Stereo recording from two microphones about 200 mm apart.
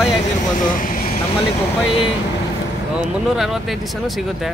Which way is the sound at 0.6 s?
40° left (ahead or behind).